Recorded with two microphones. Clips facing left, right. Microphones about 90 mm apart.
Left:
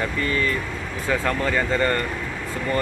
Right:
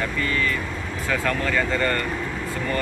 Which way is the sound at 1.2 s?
25° left (ahead or behind).